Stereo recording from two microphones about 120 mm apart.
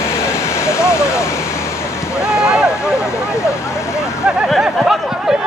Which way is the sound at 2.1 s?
5° right (ahead or behind).